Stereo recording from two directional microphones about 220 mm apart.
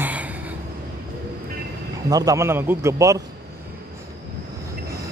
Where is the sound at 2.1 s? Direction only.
15° right (ahead or behind).